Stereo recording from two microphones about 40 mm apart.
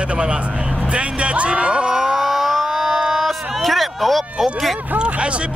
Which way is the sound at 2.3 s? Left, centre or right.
Centre.